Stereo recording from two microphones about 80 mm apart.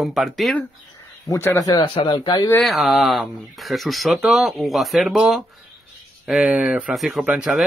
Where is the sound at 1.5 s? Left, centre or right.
Left.